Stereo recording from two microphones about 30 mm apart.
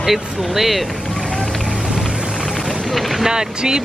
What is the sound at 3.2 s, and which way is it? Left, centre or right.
Speech, right.